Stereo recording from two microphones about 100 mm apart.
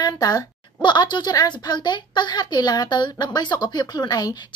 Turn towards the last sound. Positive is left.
turn(degrees=40)  # may be behind; listen again after turning